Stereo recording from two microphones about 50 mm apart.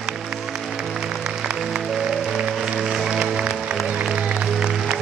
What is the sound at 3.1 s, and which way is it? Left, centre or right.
Music, centre.